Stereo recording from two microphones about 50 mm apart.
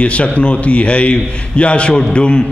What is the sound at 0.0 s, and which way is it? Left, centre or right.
A man's voice, left.